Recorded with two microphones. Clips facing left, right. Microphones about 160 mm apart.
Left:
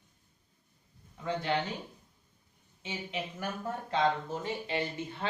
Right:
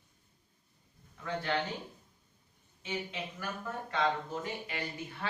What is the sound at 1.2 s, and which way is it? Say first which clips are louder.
Speech: left 2 dB; 20° left (ahead or behind).